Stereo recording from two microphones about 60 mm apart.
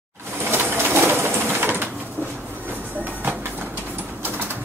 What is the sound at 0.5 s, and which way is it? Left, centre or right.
Pigeon, right.